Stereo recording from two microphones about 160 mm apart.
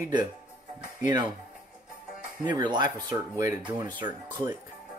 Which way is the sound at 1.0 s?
25° right (ahead or behind).